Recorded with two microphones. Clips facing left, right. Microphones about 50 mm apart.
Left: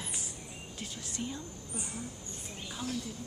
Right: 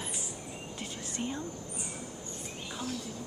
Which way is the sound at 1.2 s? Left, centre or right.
Right.